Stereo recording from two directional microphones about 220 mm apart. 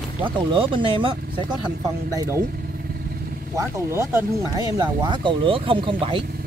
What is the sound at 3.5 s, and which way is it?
Speech, 15° right (ahead or behind).